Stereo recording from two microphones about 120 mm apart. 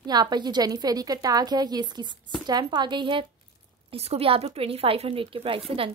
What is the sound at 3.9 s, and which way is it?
Speech, 55° right (ahead or behind).